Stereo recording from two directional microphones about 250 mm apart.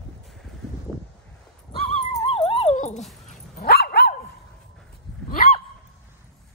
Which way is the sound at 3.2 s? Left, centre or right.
Left.